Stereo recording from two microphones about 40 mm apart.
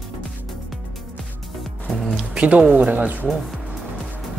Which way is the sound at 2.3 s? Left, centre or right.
Right.